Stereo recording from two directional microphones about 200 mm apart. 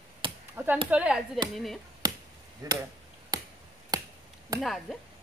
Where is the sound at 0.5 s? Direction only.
10° right (ahead or behind).